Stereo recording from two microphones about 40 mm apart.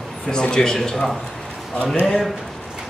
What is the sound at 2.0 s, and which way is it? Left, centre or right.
Speech, centre.